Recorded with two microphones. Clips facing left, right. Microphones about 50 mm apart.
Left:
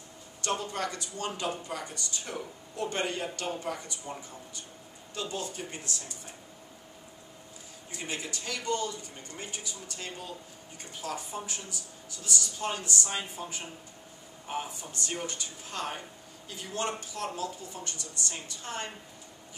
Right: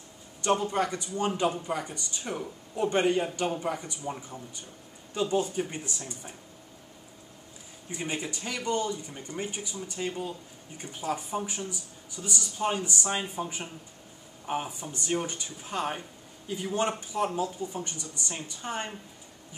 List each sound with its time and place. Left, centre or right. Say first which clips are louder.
0.4 s speech: right 6 dB; centre
7.9 s speech: right 4 dB; centre